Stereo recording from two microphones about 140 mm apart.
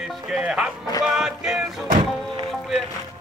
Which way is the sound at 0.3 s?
5° right (ahead or behind).